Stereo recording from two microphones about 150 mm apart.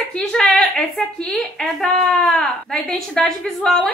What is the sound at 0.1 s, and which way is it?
Speech, 5° left (ahead or behind).